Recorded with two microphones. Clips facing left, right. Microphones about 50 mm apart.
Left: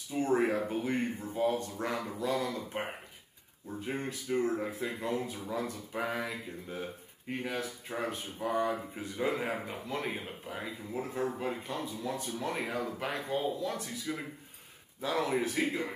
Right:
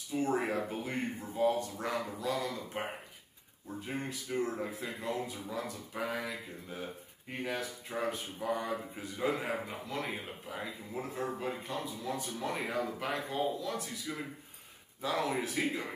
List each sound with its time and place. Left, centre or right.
0.1 s speech: centre